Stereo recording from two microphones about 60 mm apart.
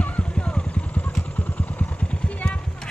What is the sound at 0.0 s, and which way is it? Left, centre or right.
Vehicle, left.